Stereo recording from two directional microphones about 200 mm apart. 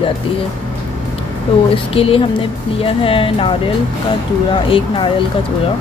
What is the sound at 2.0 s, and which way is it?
Speech, 30° left (ahead or behind).